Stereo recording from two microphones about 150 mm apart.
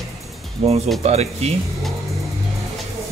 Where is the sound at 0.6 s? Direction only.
45° right (ahead or behind).